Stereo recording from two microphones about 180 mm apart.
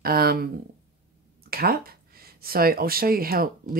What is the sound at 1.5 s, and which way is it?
Speech, 60° right (ahead or behind).